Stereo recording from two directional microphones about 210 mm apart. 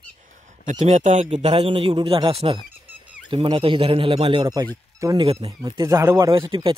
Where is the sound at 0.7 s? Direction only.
30° right (ahead or behind).